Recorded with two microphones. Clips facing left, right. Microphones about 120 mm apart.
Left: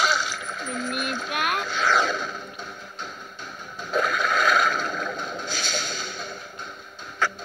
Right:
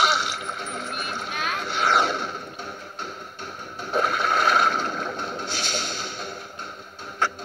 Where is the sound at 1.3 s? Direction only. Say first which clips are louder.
Left 4 dB; 60° left (ahead or behind).